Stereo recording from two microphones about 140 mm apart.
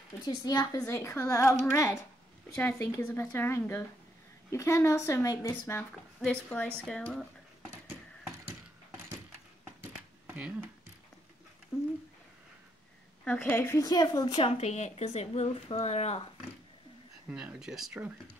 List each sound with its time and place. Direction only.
0.4 s speech: 25° left (ahead or behind); by 7.2 s 5° left (ahead or behind)
9.8 s a sound: 15° right (ahead or behind)
11.7 s speech: 5° left (ahead or behind)
13.2 s speech: 10° left (ahead or behind)
13.7 s speech: 30° left (ahead or behind)
14.4 s speech: 50° left (ahead or behind)
17.3 s speech: 5° right (ahead or behind)